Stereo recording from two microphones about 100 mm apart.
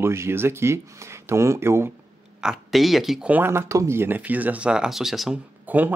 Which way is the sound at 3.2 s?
20° right (ahead or behind).